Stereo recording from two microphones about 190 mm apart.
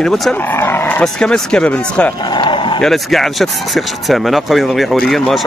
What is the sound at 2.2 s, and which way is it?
Speech, 25° left (ahead or behind).